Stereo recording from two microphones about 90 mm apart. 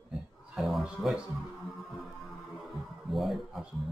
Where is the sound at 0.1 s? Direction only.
Centre (ahead or behind).